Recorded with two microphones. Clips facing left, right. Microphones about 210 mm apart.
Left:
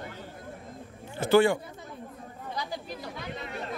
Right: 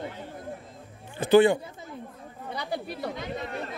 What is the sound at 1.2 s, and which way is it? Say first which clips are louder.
Speech: right 3 dB; 20° right (ahead or behind).